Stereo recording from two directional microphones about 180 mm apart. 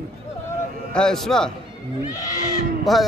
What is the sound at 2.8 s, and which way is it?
Speech, centre (ahead or behind).